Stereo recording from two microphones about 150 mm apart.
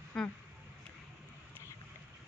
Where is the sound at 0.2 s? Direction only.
5° left (ahead or behind).